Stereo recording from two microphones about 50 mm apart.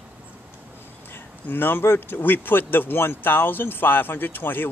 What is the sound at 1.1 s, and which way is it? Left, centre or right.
Speech, left.